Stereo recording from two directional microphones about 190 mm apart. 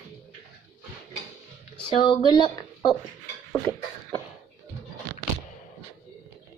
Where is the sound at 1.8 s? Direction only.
25° left (ahead or behind).